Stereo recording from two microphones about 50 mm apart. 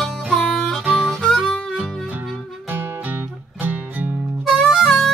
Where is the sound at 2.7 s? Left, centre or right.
Right.